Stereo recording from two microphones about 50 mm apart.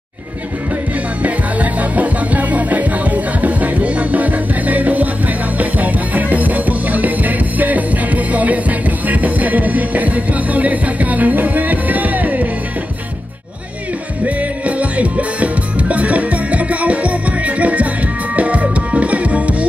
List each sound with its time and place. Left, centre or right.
1.2 s music: right
14.2 s music: right